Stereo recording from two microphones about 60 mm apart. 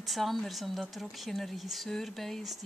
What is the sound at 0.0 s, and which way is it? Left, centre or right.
Speech, centre.